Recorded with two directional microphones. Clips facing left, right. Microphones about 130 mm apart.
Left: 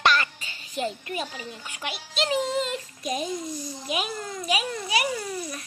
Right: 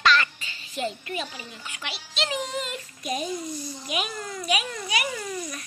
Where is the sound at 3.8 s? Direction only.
30° left (ahead or behind).